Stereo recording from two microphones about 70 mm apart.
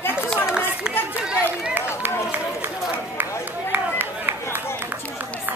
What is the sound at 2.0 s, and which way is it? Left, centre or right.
Run, right.